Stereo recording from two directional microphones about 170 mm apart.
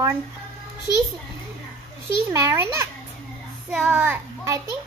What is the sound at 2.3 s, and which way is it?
A child's voice, 15° right (ahead or behind).